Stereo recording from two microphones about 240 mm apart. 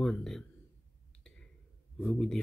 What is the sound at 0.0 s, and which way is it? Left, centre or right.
Speech, centre.